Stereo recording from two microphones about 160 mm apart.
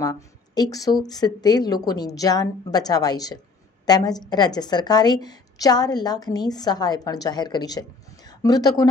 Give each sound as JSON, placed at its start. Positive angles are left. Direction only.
{"t": 0.0, "sound": "a woman's voice", "side_deg": 20}